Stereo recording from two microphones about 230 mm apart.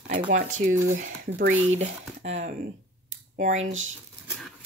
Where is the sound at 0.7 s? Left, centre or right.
Right.